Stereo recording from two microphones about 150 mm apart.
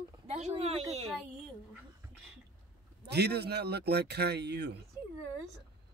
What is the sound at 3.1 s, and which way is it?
Speech, 90° right.